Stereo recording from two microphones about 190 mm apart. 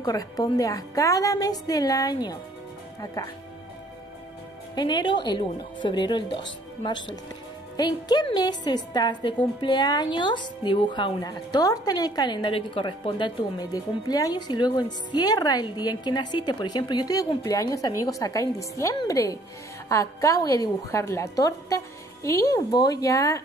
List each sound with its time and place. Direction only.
0.0 s speech: 20° left (ahead or behind)
4.7 s a woman's voice: 20° left (ahead or behind)